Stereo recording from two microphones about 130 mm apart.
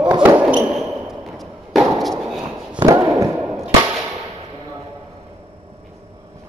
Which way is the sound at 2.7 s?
25° right (ahead or behind).